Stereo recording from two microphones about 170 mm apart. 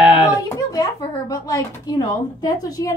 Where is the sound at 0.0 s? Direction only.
10° right (ahead or behind).